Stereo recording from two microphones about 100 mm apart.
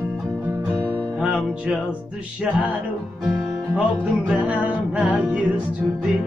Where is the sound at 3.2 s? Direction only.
10° right (ahead or behind).